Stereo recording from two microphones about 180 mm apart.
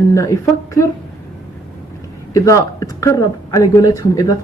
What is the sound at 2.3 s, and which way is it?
Speech, 15° left (ahead or behind).